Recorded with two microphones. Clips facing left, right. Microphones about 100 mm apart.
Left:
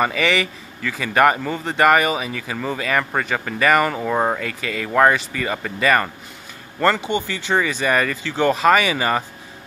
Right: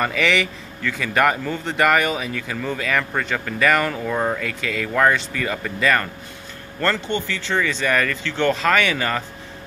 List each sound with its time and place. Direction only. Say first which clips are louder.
0.0 s a man's voice: left 1 dB; 5° left (ahead or behind)
4.1 s speech: left 2 dB; 25° left (ahead or behind)
4.4 s a man's voice: even; 5° left (ahead or behind)